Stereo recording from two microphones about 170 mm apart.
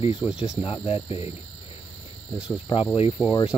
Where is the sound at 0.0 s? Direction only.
35° left (ahead or behind).